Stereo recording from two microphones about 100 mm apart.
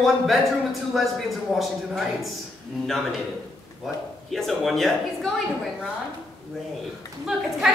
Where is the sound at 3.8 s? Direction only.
Centre (ahead or behind).